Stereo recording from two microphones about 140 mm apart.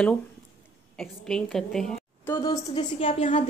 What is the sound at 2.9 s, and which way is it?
Speech, 40° left (ahead or behind).